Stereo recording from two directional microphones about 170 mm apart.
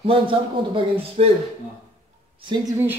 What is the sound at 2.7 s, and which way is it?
Speech, 10° right (ahead or behind).